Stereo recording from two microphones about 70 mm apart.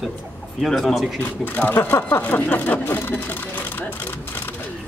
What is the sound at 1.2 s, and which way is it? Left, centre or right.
Speech, left.